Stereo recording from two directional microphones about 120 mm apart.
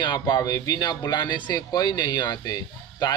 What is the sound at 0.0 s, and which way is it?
Speech, 40° left (ahead or behind).